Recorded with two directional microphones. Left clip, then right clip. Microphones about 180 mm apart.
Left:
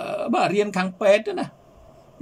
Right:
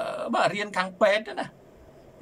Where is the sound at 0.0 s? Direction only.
20° left (ahead or behind).